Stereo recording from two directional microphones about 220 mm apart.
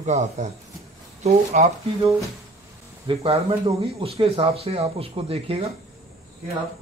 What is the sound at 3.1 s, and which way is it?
Speech, 25° right (ahead or behind).